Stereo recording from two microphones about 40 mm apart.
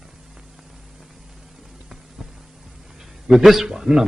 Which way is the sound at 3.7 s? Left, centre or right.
Centre.